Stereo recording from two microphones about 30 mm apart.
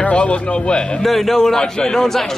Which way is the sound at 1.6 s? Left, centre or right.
Left.